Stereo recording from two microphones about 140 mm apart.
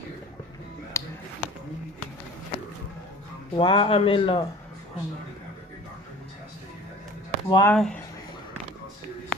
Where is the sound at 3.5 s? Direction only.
35° left (ahead or behind).